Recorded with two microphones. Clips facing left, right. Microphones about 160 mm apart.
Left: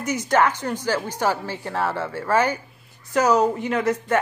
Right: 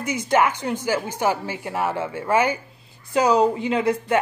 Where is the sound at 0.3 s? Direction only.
10° right (ahead or behind).